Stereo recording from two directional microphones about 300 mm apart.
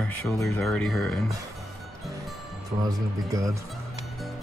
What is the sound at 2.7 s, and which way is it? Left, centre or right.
Speech, centre.